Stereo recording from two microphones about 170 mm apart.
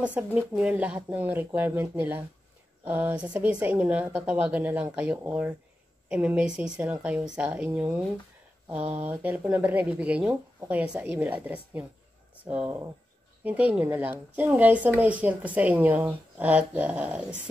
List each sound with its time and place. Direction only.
0.0 s speech: 10° right (ahead or behind)
9.0 s speech: 10° right (ahead or behind)